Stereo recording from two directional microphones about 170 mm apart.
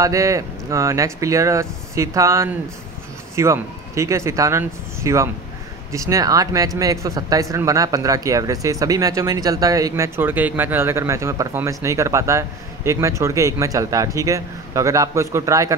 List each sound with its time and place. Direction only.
0.0 s speech: 20° right (ahead or behind)